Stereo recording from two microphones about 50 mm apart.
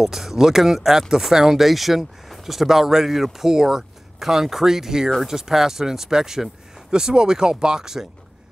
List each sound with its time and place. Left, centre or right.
0.0 s speech: centre